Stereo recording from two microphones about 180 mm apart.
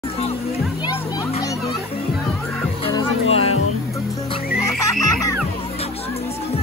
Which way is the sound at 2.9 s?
30° left (ahead or behind).